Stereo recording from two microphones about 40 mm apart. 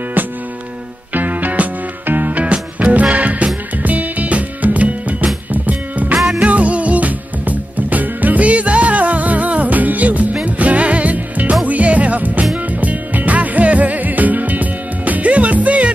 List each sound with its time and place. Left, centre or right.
1.1 s music: right
2.4 s music: right
6.1 s music: centre
6.4 s music: right